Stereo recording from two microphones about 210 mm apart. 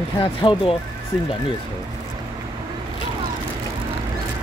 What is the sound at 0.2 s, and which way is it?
Speech, 25° left (ahead or behind).